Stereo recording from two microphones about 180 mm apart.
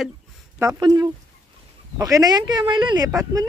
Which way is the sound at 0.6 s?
20° right (ahead or behind).